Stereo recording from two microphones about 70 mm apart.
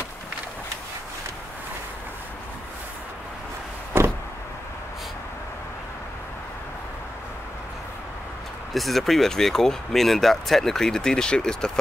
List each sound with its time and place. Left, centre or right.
3.9 s power windows: right
8.7 s speech: centre